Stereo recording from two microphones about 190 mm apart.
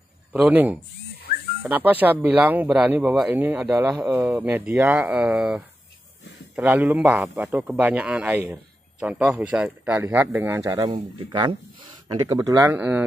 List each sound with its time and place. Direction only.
0.3 s speech: 5° right (ahead or behind)